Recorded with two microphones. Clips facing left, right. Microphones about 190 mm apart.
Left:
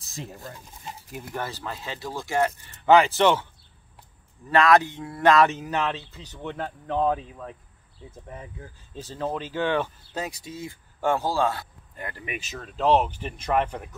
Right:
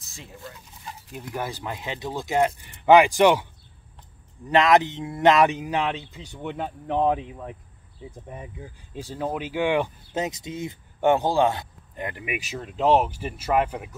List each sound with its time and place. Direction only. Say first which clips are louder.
0.1 s speech: left 4 dB; 40° left (ahead or behind)
1.1 s speech: right 2 dB; 10° right (ahead or behind)
4.5 s speech: right 1 dB; 20° right (ahead or behind)